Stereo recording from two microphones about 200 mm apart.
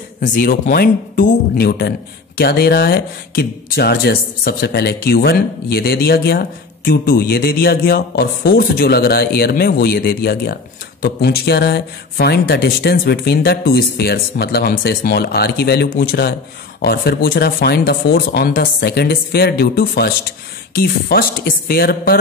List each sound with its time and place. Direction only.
0.2 s speech: 45° left (ahead or behind)